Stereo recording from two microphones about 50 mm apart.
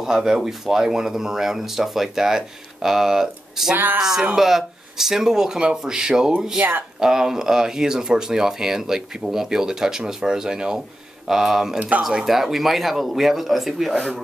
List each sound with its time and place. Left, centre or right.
0.0 s speech: centre
3.7 s speech: right
4.0 s a man's voice: centre